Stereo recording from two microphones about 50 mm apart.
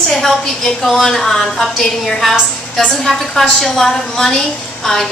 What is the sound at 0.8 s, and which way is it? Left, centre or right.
A woman's voice, centre.